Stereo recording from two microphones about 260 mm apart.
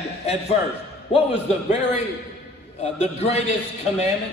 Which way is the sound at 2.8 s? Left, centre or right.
Left.